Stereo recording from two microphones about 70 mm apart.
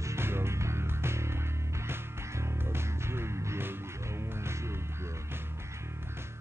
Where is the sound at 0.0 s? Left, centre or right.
Right.